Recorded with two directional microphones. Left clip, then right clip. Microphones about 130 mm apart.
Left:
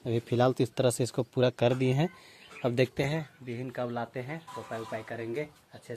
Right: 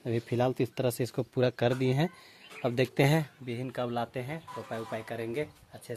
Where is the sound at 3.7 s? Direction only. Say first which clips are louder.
Right 1 dB; 20° right (ahead or behind).